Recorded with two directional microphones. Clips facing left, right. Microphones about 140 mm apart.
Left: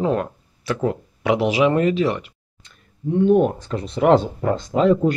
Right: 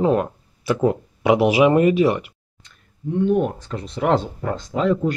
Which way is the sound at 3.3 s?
35° left (ahead or behind).